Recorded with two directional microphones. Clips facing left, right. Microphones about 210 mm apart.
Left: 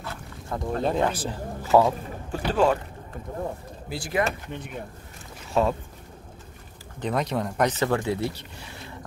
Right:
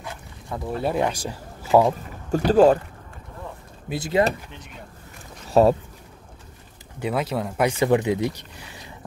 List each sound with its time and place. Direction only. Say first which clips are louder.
0.5 s speech: right 1 dB; 5° right (ahead or behind)
2.3 s speech: right 7 dB; 40° right (ahead or behind)
3.9 s speech: right 5 dB; 20° right (ahead or behind)
5.5 s speech: right 7 dB; 40° right (ahead or behind)
7.0 s speech: right 1 dB; 5° right (ahead or behind)